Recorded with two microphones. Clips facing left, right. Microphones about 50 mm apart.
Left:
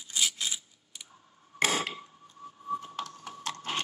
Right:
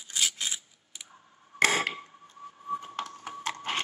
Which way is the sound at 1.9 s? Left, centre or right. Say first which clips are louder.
Right 2 dB; right.